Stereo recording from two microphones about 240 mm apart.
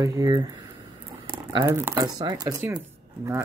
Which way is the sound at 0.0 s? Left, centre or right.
Centre.